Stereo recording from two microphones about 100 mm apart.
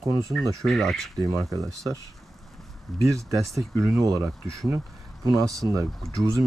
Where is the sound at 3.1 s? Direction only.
35° right (ahead or behind).